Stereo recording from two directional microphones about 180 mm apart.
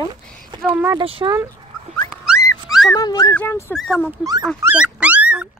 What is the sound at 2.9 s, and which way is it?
Speech, 20° left (ahead or behind).